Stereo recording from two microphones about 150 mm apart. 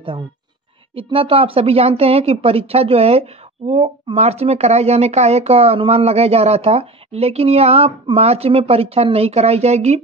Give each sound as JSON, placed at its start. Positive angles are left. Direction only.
{"t": 0.9, "sound": "speech", "side_deg": -35}